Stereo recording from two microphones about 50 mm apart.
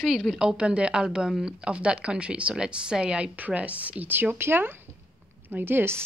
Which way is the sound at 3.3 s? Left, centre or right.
Right.